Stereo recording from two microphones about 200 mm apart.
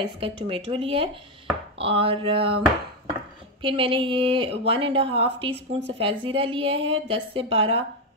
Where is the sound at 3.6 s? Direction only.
25° right (ahead or behind).